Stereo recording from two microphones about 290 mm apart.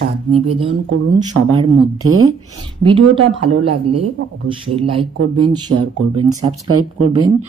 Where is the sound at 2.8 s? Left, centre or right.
Centre.